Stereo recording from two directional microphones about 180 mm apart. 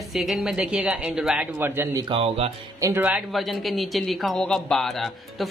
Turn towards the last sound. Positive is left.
turn(degrees=0)  # may be behind; listen again after turning